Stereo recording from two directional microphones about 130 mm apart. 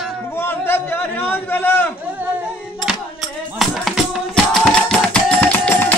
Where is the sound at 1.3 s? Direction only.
15° left (ahead or behind).